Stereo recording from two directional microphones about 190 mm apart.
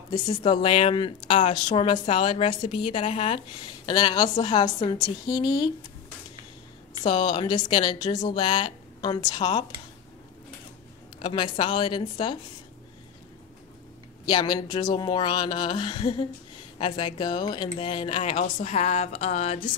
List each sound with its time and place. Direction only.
0.4 s speech: 30° left (ahead or behind)
7.0 s a woman's voice: 25° left (ahead or behind)
11.1 s speech: 25° left (ahead or behind)
14.2 s speech: 20° left (ahead or behind)